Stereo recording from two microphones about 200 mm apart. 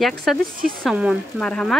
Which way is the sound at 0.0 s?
Centre (ahead or behind).